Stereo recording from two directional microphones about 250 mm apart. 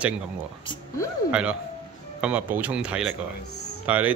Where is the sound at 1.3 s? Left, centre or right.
Centre.